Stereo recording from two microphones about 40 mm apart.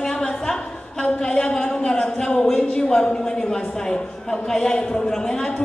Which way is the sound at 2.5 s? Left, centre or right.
Centre.